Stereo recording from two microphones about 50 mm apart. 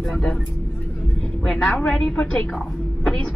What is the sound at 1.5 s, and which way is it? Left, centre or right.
Speech, centre.